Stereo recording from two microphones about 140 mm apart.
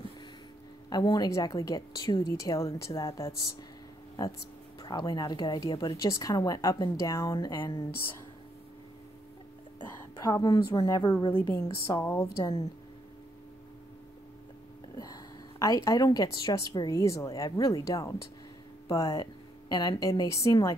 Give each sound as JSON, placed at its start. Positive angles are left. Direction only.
{"t": 0.8, "sound": "speech", "side_deg": 30}
{"t": 9.8, "sound": "a woman's voice", "side_deg": 20}
{"t": 15.6, "sound": "speech", "side_deg": 25}